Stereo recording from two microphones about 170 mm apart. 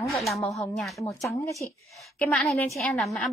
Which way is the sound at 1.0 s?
20° left (ahead or behind).